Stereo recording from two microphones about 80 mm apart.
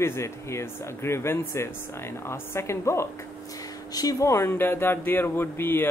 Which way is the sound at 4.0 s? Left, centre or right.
Left.